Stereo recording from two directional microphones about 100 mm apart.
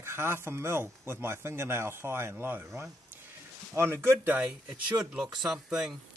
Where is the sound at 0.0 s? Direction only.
25° right (ahead or behind); by 5.9 s 5° right (ahead or behind).